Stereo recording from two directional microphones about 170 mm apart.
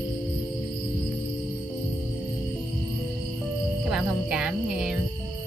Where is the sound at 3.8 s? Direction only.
5° right (ahead or behind).